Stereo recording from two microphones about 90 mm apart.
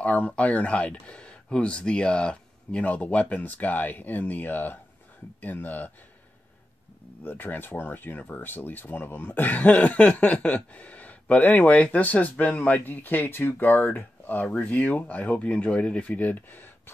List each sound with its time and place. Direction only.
0.0 s speech: 15° left (ahead or behind)
7.2 s speech: 20° left (ahead or behind)